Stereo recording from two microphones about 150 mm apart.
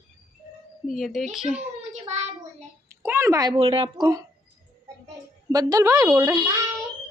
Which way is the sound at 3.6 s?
40° right (ahead or behind).